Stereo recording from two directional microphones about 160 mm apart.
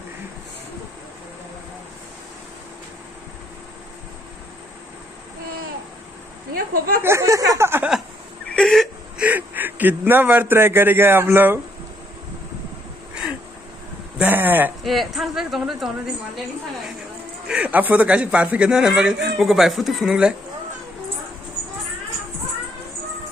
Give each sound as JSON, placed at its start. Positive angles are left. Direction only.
{"t": 6.5, "sound": "a sound", "side_deg": -65}
{"t": 7.0, "sound": "a sound", "side_deg": -15}
{"t": 8.5, "sound": "whimper", "side_deg": 5}
{"t": 9.2, "sound": "a man's voice", "side_deg": -10}
{"t": 14.1, "sound": "speech", "side_deg": -10}
{"t": 14.8, "sound": "speech", "side_deg": 0}
{"t": 17.5, "sound": "speech", "side_deg": -10}